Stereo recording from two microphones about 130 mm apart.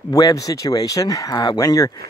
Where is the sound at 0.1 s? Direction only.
25° left (ahead or behind).